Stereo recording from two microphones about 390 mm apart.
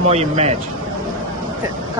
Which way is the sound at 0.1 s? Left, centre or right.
Centre.